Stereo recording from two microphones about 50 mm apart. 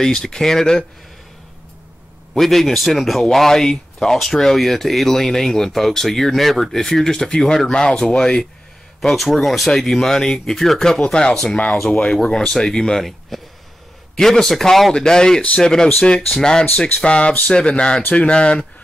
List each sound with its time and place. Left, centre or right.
0.0 s speech: centre
2.3 s speech: centre
9.0 s speech: centre
11.7 s speech: centre
12.0 s speech: centre